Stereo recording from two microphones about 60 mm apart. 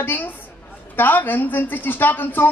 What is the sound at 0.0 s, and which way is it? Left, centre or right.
A woman's voice, left.